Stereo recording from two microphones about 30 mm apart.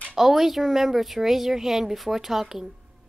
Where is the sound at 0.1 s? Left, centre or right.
Centre.